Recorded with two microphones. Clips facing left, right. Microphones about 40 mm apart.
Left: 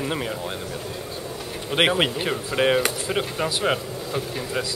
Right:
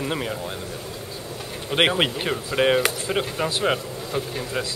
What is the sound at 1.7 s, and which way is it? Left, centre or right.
Speech, centre.